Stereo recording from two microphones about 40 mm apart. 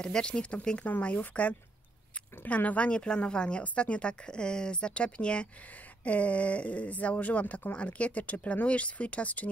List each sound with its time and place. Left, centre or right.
0.0 s speech: left